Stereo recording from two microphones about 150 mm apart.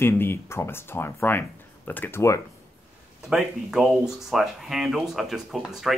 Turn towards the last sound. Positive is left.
turn(degrees=0)  # may be behind; listen again after turning